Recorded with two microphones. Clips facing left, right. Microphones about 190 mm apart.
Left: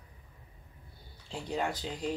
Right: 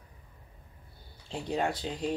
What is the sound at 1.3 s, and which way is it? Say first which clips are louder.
Speech: right 3 dB; 25° right (ahead or behind).